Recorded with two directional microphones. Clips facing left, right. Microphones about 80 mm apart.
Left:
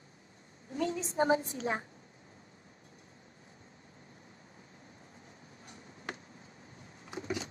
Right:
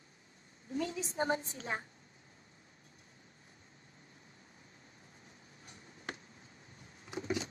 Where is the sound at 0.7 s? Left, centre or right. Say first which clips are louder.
Left 3 dB; left.